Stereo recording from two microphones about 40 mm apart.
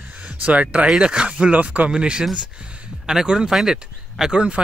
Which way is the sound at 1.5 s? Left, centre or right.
Right.